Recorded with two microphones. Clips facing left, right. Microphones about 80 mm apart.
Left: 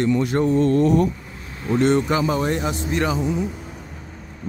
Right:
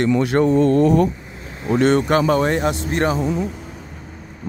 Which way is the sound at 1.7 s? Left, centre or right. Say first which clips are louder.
Right 2 dB; right.